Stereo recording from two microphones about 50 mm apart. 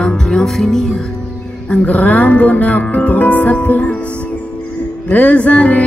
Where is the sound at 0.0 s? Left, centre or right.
Centre.